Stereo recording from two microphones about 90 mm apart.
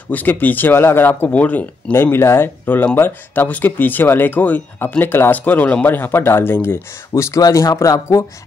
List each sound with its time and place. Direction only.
0.1 s speech: 20° left (ahead or behind); by 8.3 s 40° left (ahead or behind)